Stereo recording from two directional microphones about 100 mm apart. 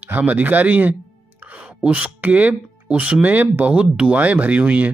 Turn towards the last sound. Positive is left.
turn(degrees=-15)  # may be behind; listen again after turning